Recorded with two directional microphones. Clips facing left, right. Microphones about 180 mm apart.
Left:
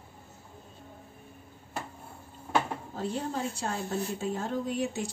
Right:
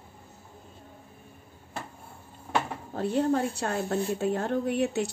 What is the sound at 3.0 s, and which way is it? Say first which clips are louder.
A woman's voice: right 8 dB; 60° right (ahead or behind).